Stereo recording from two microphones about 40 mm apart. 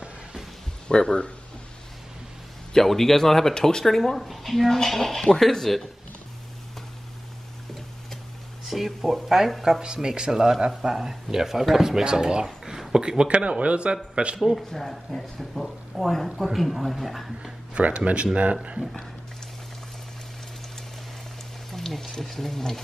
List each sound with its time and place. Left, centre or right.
0.8 s speech: left
2.7 s speech: centre
4.3 s speech: centre
8.6 s speech: centre
12.0 s speech: right
12.6 s a sound: centre
13.3 s speech: right
14.7 s speech: centre
17.7 s speech: right
21.7 s speech: centre